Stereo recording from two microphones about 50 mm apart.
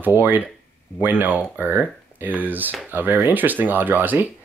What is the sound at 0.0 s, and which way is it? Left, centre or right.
Speech, right.